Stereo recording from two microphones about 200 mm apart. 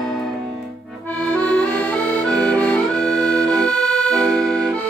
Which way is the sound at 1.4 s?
5° left (ahead or behind).